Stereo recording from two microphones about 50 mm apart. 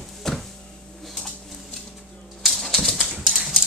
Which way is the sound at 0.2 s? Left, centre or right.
Centre.